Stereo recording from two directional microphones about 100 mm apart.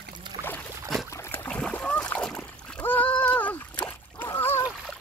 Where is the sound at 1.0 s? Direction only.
25° left (ahead or behind).